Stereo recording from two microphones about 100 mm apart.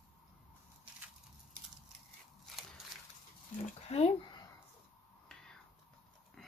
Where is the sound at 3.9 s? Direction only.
90° left.